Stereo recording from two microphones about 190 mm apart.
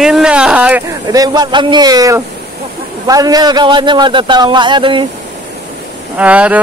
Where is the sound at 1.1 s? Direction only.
20° right (ahead or behind).